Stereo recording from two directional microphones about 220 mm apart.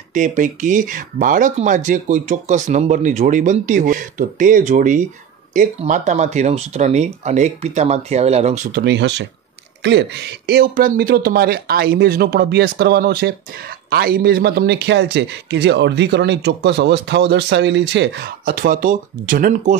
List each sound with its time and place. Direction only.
0.1 s speech: 35° right (ahead or behind)
8.7 s a man's voice: 50° right (ahead or behind); by 19.8 s 35° right (ahead or behind)